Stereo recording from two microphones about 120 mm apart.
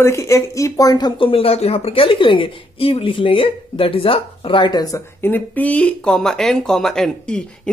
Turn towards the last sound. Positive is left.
turn(degrees=5)  # may be behind; listen again after turning